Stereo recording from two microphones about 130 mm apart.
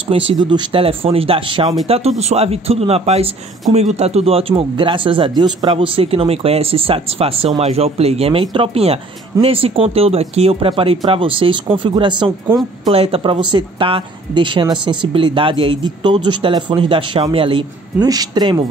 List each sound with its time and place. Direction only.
0.1 s speech: 40° right (ahead or behind)
12.9 s speech: 45° right (ahead or behind)
18.0 s speech: 30° right (ahead or behind)